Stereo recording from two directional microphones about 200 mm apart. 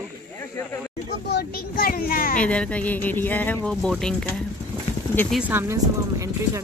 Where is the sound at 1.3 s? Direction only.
50° left (ahead or behind).